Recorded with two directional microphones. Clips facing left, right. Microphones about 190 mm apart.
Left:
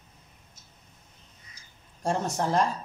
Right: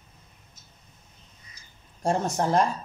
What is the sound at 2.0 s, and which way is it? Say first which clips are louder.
Speech: right 3 dB; 45° right (ahead or behind).